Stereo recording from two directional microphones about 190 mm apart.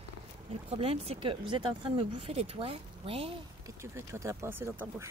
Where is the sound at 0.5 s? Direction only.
30° right (ahead or behind).